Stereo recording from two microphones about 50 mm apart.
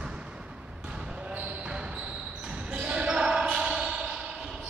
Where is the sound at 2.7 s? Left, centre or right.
Right.